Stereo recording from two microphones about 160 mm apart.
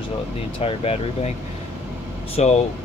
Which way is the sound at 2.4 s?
45° left (ahead or behind).